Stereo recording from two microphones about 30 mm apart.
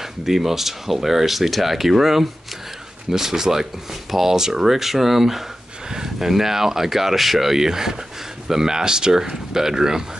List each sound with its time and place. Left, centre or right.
0.2 s speech: centre